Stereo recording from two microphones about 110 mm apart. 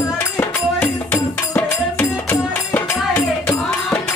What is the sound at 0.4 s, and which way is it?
Music, 15° left (ahead or behind).